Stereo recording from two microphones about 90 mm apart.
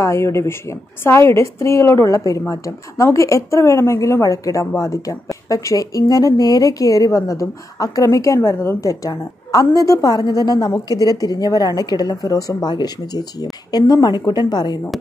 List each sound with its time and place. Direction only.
0.0 s a woman's voice: 30° left (ahead or behind)
8.8 s a woman's voice: 40° left (ahead or behind)